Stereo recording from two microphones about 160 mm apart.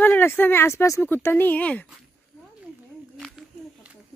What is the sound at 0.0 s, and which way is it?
Speech, 10° left (ahead or behind).